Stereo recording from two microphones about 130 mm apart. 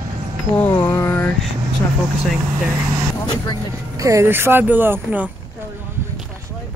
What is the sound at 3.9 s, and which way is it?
Speech, 25° right (ahead or behind).